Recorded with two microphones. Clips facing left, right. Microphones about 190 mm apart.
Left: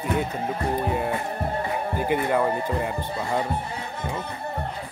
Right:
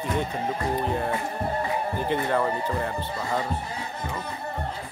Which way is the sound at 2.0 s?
10° left (ahead or behind).